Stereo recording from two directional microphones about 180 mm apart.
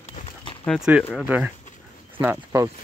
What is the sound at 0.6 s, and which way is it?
Speech, 5° right (ahead or behind).